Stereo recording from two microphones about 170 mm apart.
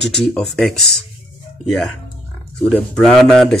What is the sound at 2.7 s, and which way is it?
Speech, 5° left (ahead or behind).